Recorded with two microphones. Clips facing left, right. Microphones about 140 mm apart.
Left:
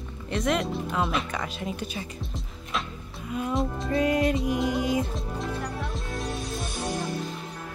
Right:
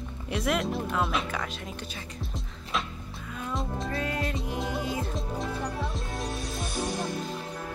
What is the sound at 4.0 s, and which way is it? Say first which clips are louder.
Music: left 11 dB; 15° left (ahead or behind).